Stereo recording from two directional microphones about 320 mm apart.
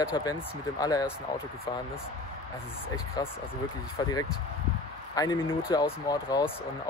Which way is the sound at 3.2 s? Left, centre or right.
Centre.